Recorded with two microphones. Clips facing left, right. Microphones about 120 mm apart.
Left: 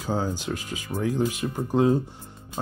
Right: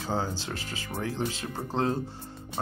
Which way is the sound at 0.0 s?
15° left (ahead or behind).